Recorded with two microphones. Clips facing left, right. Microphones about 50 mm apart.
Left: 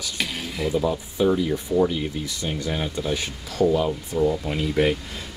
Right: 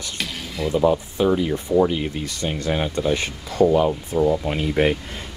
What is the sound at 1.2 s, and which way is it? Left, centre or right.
Speech, right.